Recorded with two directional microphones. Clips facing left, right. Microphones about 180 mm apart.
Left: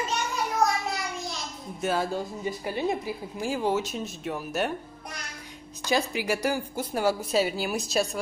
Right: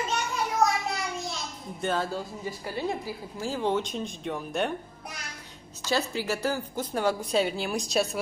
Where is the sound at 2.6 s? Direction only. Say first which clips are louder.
Left 2 dB; 20° left (ahead or behind).